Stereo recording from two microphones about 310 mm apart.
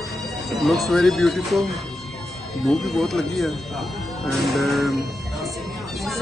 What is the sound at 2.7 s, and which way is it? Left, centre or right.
Speech, centre.